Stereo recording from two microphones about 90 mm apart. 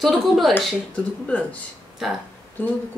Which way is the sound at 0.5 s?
15° left (ahead or behind).